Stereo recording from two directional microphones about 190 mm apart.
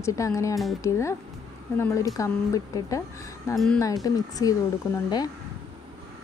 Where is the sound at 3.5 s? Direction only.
15° left (ahead or behind).